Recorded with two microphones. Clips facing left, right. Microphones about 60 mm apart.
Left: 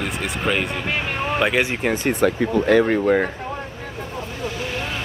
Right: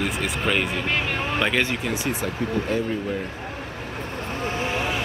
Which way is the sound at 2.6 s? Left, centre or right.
Left.